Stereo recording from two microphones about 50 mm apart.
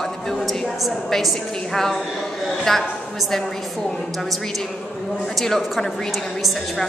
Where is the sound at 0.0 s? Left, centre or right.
Centre.